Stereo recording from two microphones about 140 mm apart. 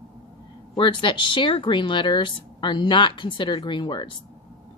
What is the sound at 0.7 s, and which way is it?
A woman's voice, 35° left (ahead or behind).